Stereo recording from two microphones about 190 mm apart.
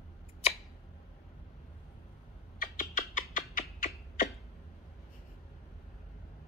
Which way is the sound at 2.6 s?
45° left (ahead or behind).